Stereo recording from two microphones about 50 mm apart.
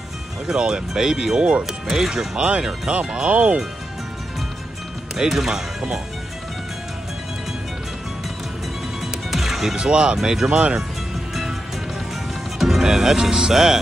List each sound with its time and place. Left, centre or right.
0.5 s speech: centre
5.1 s speech: centre
9.0 s music: centre
9.8 s speech: centre
12.5 s speech: centre